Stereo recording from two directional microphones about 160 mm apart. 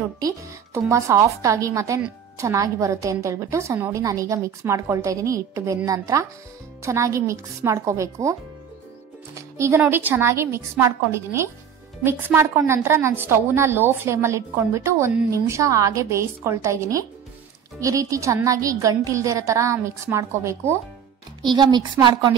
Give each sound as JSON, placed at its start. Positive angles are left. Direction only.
{"t": 0.7, "sound": "a woman's voice", "side_deg": -15}
{"t": 9.3, "sound": "music", "side_deg": -20}
{"t": 9.8, "sound": "a woman's voice", "side_deg": -10}
{"t": 21.4, "sound": "a woman's voice", "side_deg": -25}